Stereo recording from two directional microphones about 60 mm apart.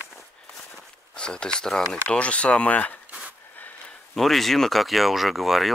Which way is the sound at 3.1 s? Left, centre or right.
Right.